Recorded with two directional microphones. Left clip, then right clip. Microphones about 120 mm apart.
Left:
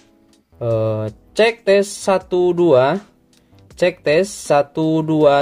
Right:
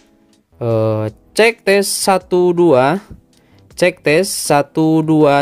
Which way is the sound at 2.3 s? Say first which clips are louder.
Right 2 dB; 70° right (ahead or behind).